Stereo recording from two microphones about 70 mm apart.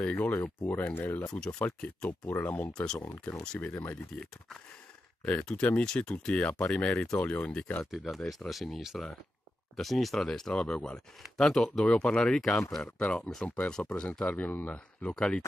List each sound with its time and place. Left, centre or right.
0.0 s speech: left
1.3 s speech: centre
5.4 s speech: centre
7.9 s speech: centre